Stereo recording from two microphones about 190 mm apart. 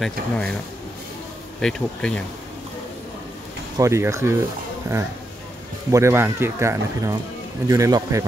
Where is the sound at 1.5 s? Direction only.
5° left (ahead or behind).